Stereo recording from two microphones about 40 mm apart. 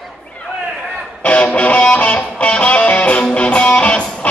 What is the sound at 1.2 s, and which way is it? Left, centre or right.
Music, left.